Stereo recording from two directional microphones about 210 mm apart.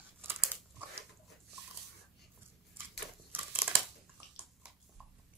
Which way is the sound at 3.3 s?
10° right (ahead or behind).